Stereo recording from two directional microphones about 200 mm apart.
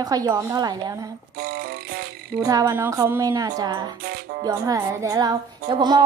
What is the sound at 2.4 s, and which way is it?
Music, 15° right (ahead or behind).